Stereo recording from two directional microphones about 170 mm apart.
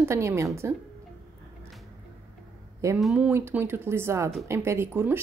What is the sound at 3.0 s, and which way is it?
A woman's voice, 5° right (ahead or behind).